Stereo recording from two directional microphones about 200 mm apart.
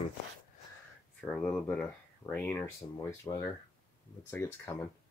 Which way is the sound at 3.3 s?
20° left (ahead or behind).